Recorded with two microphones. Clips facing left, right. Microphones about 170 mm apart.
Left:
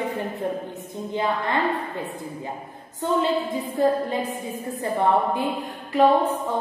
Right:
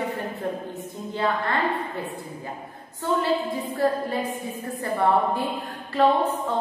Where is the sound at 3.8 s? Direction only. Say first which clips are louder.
Left 3 dB; 20° left (ahead or behind).